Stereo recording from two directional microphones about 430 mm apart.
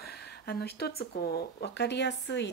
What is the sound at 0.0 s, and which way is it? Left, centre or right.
Speech, left.